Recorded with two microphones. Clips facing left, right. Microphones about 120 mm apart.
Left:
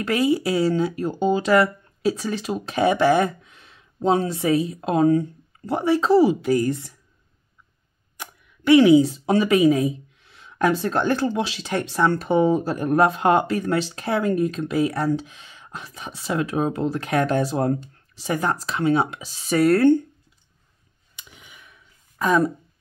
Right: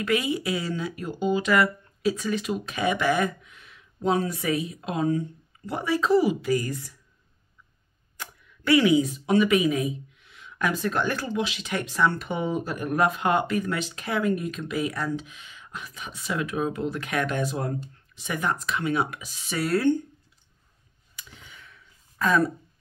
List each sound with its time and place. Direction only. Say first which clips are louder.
0.0 s speech: left 5 dB; 35° left (ahead or behind)
5.7 s speech: left 4 dB; 30° left (ahead or behind)
8.2 s speech: left 2 dB; 25° left (ahead or behind)
19.5 s speech: left 7 dB; 50° left (ahead or behind)
21.2 s a sound: even; 15° left (ahead or behind)